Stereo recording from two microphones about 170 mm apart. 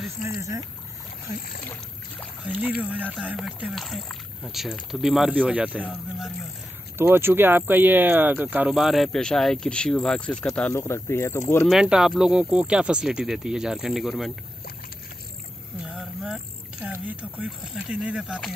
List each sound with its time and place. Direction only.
0.2 s speech: 20° right (ahead or behind)
2.4 s speech: 5° right (ahead or behind); by 11.4 s 15° left (ahead or behind)
11.6 s speech: 5° right (ahead or behind)
15.8 s boat: centre (ahead or behind)
16.9 s speech: 10° right (ahead or behind)